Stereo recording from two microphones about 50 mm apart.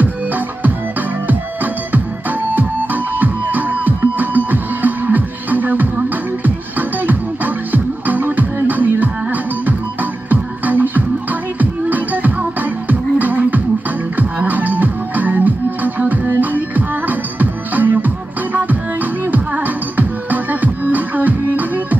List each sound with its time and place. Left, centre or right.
1.2 s music: right